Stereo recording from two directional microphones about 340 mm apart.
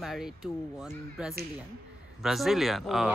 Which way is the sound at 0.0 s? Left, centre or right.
Centre.